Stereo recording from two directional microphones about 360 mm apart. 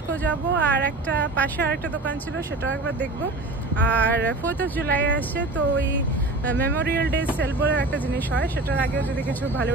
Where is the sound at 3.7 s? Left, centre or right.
Centre.